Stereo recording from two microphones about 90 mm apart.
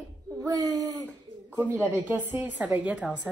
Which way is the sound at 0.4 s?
40° right (ahead or behind).